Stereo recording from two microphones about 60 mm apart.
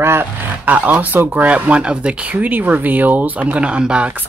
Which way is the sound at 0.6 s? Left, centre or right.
Right.